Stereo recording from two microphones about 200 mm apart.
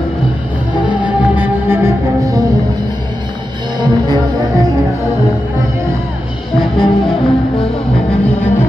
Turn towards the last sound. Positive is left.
turn(degrees=25)  # may be behind; listen again after turning